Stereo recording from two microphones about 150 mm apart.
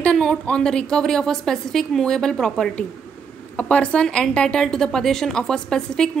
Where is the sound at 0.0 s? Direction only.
5° left (ahead or behind).